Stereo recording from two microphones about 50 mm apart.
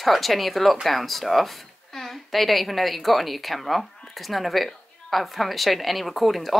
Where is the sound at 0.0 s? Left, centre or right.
Centre.